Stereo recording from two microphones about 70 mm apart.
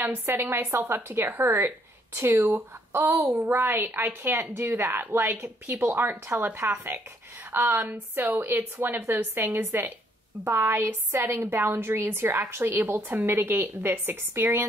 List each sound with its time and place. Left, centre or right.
0.0 s a woman's voice: right